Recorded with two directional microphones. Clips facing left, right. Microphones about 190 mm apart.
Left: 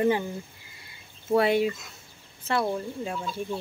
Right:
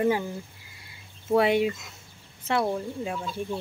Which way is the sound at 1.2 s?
15° right (ahead or behind).